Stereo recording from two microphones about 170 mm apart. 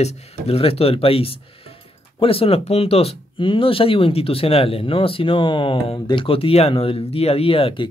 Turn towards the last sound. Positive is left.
turn(degrees=30)  # may be behind; listen again after turning